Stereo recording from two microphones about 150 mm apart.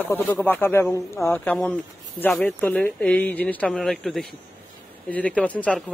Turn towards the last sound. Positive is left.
turn(degrees=10)  # may be behind; listen again after turning